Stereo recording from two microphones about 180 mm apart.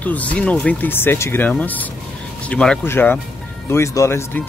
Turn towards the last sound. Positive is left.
turn(degrees=15)  # may be behind; listen again after turning